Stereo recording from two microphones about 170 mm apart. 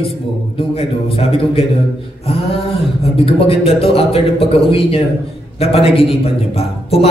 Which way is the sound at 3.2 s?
35° left (ahead or behind).